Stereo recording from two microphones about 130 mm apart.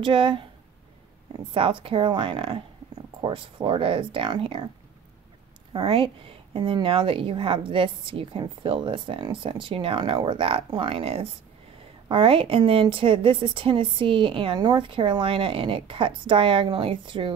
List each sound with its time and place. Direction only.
0.0 s a woman's voice: 40° right (ahead or behind)
5.7 s a woman's voice: 45° right (ahead or behind)